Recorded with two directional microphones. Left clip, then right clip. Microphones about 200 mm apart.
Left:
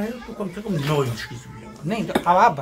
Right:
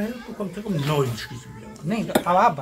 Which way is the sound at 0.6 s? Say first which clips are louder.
Left 1 dB; 10° left (ahead or behind).